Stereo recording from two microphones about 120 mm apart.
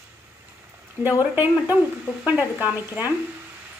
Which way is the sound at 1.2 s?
15° right (ahead or behind).